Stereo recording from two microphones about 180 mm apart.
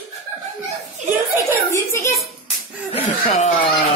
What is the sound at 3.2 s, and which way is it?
Speech, 35° left (ahead or behind).